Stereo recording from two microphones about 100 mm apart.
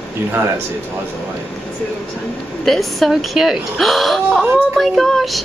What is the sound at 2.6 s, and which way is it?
Speech, centre (ahead or behind).